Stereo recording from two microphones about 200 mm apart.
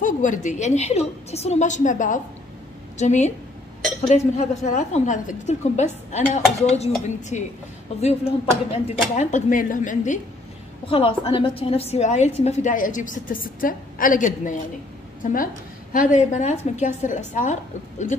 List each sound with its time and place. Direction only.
0.0 s a woman's voice: 40° left (ahead or behind)
10.9 s a woman's voice: 25° left (ahead or behind)